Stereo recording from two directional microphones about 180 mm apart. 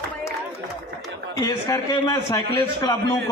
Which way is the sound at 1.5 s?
20° left (ahead or behind).